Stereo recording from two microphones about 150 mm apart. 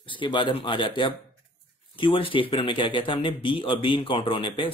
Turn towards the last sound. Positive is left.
turn(degrees=35)  # may be behind; listen again after turning